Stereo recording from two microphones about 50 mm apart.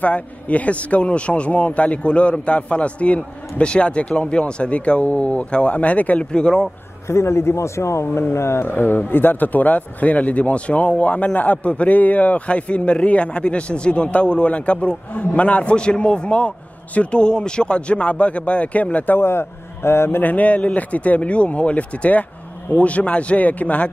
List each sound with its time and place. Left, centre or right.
0.0 s a man's voice: left
6.3 s speech: centre
7.1 s speech: left
8.6 s a man's voice: left
19.1 s a man's voice: left
20.2 s a man's voice: left